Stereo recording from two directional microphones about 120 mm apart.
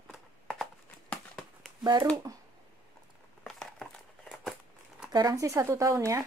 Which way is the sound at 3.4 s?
5° left (ahead or behind).